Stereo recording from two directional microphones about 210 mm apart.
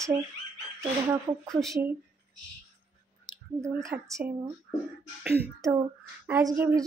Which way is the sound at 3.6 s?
15° right (ahead or behind).